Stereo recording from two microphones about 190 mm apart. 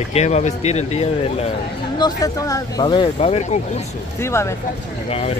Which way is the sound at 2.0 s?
20° left (ahead or behind).